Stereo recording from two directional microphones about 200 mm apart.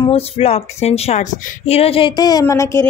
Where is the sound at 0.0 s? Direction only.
30° left (ahead or behind).